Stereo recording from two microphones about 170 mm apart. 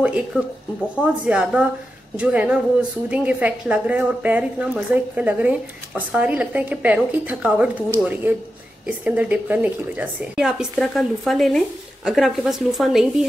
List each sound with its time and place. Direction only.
0.0 s a woman's voice: 5° right (ahead or behind)